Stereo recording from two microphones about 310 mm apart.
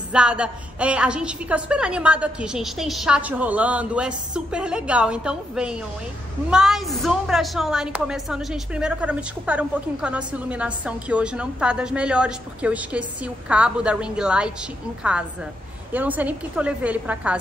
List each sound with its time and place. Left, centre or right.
0.1 s a woman's voice: centre
15.9 s a woman's voice: centre